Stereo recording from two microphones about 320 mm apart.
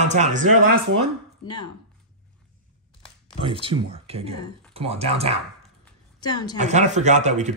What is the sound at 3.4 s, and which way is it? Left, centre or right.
A man's voice, centre.